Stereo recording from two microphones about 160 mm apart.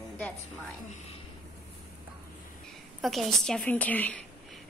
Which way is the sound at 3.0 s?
Centre (ahead or behind).